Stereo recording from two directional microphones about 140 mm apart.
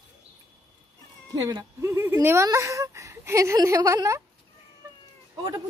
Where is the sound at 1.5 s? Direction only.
25° right (ahead or behind).